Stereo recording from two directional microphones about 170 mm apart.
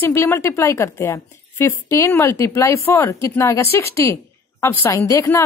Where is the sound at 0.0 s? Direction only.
15° left (ahead or behind).